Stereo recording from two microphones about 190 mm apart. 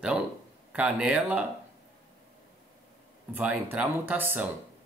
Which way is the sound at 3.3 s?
10° right (ahead or behind).